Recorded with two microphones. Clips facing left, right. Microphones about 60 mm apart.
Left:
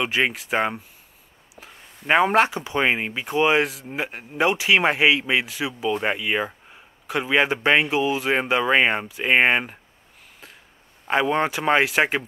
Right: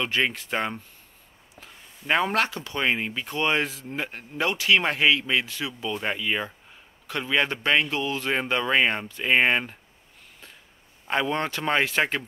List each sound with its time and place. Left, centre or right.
0.0 s speech: centre
2.0 s speech: centre
11.1 s speech: centre